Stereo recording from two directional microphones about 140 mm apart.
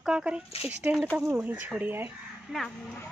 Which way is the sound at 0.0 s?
5° right (ahead or behind).